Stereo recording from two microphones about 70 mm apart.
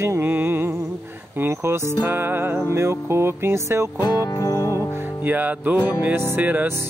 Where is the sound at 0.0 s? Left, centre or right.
Right.